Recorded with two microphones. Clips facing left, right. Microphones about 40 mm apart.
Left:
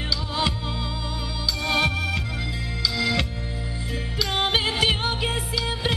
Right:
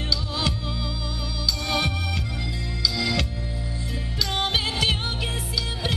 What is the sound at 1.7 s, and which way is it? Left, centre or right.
Music, centre.